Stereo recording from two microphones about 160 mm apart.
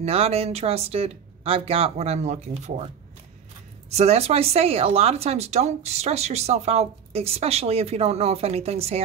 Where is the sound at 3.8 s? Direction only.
40° right (ahead or behind).